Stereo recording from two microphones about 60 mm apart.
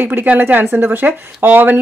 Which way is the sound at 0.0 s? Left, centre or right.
Right.